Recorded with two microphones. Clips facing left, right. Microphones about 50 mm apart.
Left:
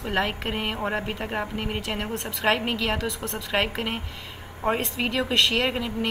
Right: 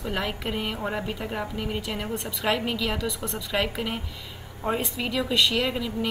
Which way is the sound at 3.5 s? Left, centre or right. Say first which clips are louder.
Left 2 dB; left.